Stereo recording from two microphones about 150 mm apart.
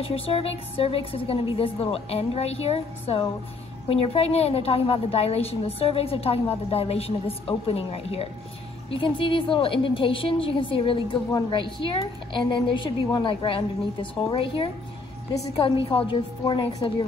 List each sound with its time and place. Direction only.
0.0 s a woman's voice: 40° left (ahead or behind)